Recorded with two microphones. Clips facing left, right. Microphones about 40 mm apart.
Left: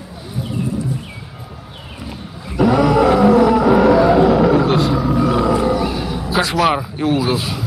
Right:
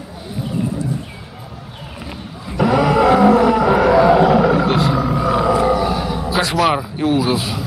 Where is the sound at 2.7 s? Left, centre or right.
Right.